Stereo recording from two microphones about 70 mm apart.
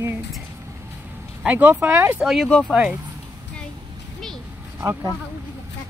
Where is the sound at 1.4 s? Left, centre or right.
Centre.